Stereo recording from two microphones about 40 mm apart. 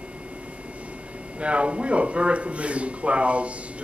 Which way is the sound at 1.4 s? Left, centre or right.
Right.